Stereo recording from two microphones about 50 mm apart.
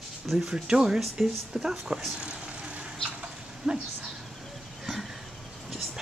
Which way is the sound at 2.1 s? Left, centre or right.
Right.